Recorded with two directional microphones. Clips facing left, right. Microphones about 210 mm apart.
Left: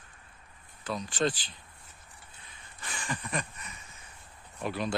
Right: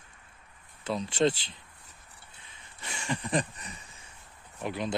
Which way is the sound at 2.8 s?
25° right (ahead or behind).